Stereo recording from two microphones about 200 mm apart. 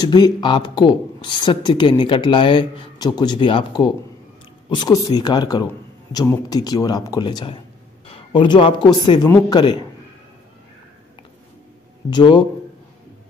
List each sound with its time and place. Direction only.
0.0 s speech: 20° left (ahead or behind)
12.1 s speech: 25° left (ahead or behind)